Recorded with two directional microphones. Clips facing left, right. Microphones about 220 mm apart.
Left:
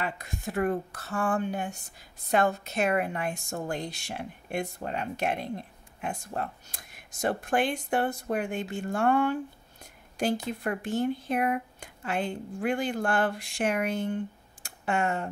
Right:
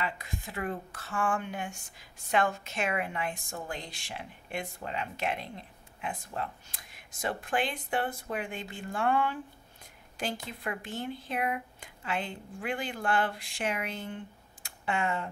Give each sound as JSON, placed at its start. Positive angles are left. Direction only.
{"t": 0.0, "sound": "speech", "side_deg": 50}